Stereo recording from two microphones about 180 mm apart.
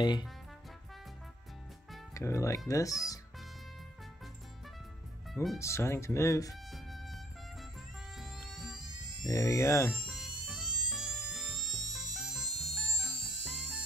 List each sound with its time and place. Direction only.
2.1 s speech: 15° left (ahead or behind)
5.3 s speech: centre (ahead or behind)
5.6 s speech: 15° left (ahead or behind)
6.5 s music: centre (ahead or behind)
8.2 s music: centre (ahead or behind)
9.2 s speech: 20° left (ahead or behind)
9.9 s music: centre (ahead or behind)